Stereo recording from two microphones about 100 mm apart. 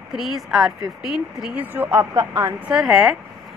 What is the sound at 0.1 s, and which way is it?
Speech, 5° right (ahead or behind).